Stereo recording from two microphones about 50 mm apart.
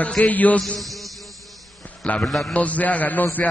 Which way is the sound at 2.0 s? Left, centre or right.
Left.